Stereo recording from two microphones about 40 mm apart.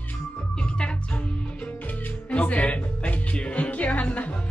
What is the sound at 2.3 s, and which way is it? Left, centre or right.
Speech, left.